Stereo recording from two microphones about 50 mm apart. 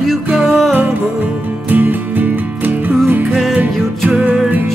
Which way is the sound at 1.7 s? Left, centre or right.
Right.